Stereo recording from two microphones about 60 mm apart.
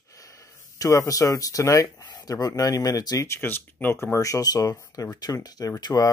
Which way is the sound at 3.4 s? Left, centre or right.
Left.